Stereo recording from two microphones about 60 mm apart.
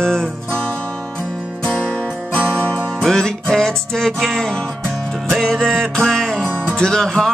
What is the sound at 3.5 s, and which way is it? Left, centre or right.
Music, centre.